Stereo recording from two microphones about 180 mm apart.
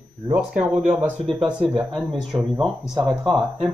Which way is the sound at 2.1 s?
25° right (ahead or behind).